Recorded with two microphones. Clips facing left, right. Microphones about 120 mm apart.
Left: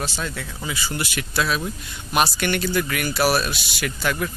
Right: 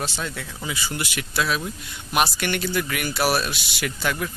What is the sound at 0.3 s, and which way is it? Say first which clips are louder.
Speech: left 1 dB; 10° right (ahead or behind).